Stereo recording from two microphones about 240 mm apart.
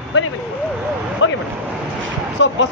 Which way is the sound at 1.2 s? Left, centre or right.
Left.